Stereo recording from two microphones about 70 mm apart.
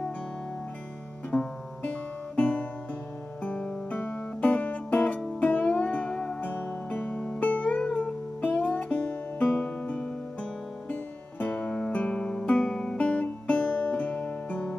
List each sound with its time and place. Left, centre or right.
1.3 s music: centre